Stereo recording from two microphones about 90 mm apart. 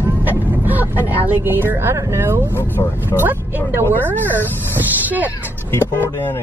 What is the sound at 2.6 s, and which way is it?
Speech, 25° left (ahead or behind).